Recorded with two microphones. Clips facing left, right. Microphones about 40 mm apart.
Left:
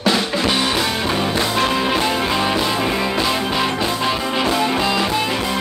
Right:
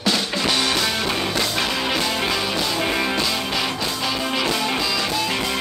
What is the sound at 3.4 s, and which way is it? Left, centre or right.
Music, left.